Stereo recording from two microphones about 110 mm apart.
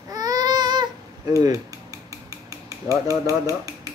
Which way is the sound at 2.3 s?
30° right (ahead or behind).